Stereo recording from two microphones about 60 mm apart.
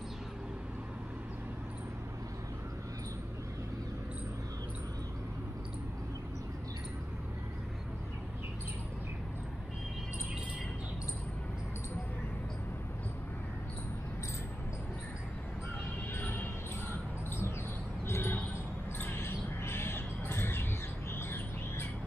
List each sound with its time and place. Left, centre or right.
16.2 s music: left
18.0 s basketball bounce: left
18.9 s a sound: left